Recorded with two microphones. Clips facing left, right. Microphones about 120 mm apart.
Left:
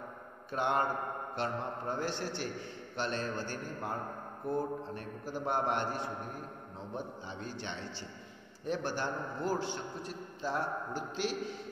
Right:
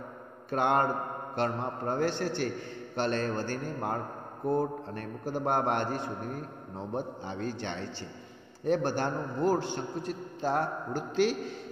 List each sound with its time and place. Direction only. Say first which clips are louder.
0.5 s a man's voice: right 5 dB; 60° right (ahead or behind)